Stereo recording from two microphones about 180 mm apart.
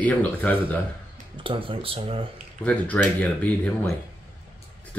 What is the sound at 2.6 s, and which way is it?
Speech, 10° left (ahead or behind).